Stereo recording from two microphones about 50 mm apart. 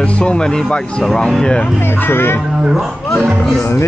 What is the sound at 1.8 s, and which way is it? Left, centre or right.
Speech, left.